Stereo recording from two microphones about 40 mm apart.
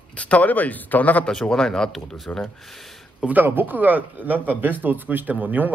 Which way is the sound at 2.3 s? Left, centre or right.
Left.